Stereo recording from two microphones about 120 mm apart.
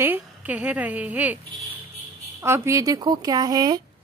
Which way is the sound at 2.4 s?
20° right (ahead or behind).